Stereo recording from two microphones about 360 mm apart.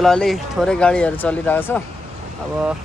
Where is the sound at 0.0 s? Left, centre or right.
Centre.